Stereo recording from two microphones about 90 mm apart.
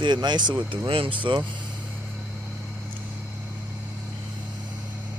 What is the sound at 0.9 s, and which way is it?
Speech, 80° right.